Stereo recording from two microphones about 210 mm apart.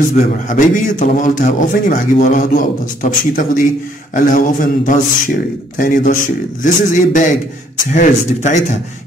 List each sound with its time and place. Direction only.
0.2 s a man's voice: 35° left (ahead or behind)